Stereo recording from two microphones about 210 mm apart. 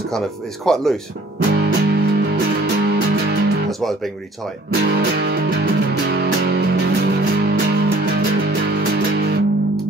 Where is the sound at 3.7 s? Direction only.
Centre (ahead or behind).